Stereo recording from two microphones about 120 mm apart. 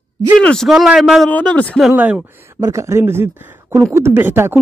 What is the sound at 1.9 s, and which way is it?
Speech, 10° right (ahead or behind).